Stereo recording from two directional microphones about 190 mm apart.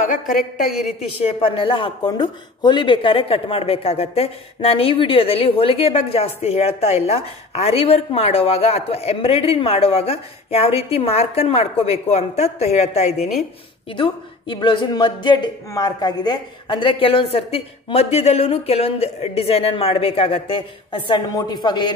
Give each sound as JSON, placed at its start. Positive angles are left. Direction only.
{"t": 0.7, "sound": "a woman's voice", "side_deg": 0}
{"t": 1.2, "sound": "a man's voice", "side_deg": 30}